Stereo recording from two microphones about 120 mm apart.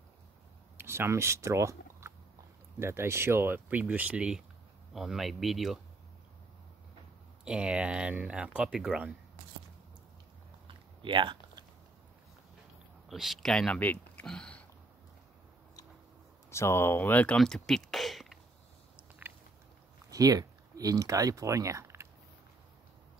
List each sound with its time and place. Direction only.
0.7 s speech: 20° right (ahead or behind); by 5.8 s centre (ahead or behind)
7.4 s speech: 5° right (ahead or behind)
10.7 s biting: 45° right (ahead or behind)
13.1 s speech: centre (ahead or behind)
14.2 s a sound: 5° left (ahead or behind)
16.4 s speech: 20° left (ahead or behind)
17.4 s speech: 5° left (ahead or behind)
20.1 s speech: 30° right (ahead or behind)